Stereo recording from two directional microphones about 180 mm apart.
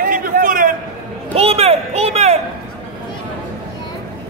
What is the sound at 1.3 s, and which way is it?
A man's voice, 35° right (ahead or behind).